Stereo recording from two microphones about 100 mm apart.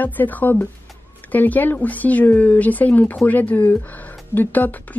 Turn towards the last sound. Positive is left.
turn(degrees=15)  # may be behind; listen again after turning